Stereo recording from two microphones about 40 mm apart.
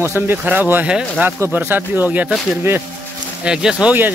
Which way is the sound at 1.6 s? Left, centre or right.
Right.